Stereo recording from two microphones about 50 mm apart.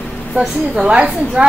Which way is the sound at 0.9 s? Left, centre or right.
Right.